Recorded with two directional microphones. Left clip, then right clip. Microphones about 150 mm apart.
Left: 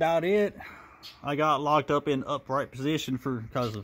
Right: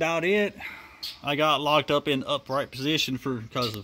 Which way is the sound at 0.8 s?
Centre (ahead or behind).